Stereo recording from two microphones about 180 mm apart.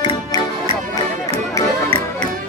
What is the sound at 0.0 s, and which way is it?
Music, 25° left (ahead or behind).